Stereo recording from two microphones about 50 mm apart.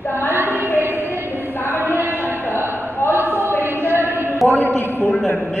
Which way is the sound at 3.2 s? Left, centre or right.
Right.